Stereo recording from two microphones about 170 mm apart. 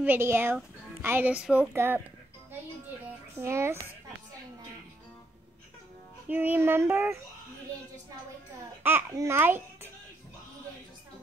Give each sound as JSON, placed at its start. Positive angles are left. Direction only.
{"t": 0.0, "sound": "speech", "side_deg": -10}
{"t": 3.3, "sound": "speech", "side_deg": -15}
{"t": 6.2, "sound": "speech", "side_deg": -10}
{"t": 8.8, "sound": "speech", "side_deg": -15}